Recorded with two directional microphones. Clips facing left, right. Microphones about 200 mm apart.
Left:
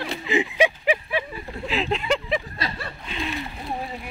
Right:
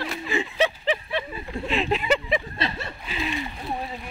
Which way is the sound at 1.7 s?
Centre (ahead or behind).